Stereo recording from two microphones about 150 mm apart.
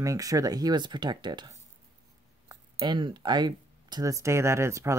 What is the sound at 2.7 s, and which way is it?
Speech, 30° right (ahead or behind).